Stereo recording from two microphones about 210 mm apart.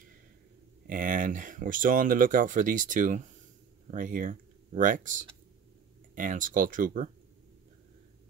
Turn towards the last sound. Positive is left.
turn(degrees=-40)  # may be behind; listen again after turning